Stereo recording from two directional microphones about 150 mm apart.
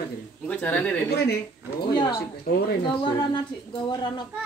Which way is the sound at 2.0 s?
30° left (ahead or behind).